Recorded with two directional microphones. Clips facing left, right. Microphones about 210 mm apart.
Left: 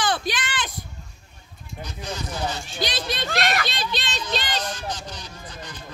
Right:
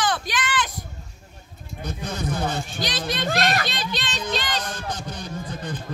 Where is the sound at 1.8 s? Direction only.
55° right (ahead or behind).